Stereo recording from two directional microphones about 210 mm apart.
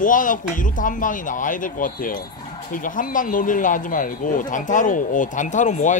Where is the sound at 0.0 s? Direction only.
40° left (ahead or behind).